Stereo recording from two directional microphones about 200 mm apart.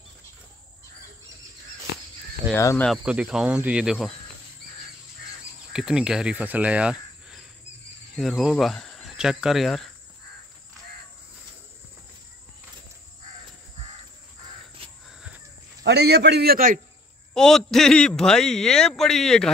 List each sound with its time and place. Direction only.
2.5 s speech: 10° left (ahead or behind)
2.9 s a man's voice: 5° right (ahead or behind)
5.7 s cricket: 5° right (ahead or behind)
8.2 s speech: centre (ahead or behind)
15.8 s a man's voice: 55° right (ahead or behind)
17.3 s a man's voice: 5° left (ahead or behind)